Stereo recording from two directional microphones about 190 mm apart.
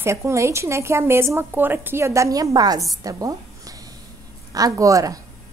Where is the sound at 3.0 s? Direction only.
20° right (ahead or behind).